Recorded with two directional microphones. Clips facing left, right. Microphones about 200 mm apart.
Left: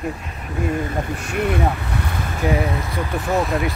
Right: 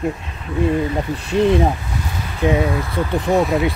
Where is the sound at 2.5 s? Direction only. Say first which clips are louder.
Right 4 dB; 25° right (ahead or behind).